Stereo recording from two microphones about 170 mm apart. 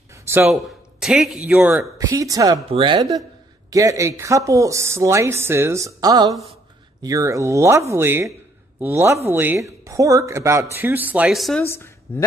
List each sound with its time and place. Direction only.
0.5 s a man's voice: 5° right (ahead or behind)
2.0 s speech: 20° right (ahead or behind); by 11.6 s centre (ahead or behind)
11.6 s speech: 15° left (ahead or behind)